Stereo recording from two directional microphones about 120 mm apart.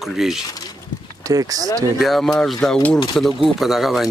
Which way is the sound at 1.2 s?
30° right (ahead or behind).